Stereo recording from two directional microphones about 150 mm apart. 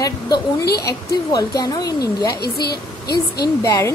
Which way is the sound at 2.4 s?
90° left.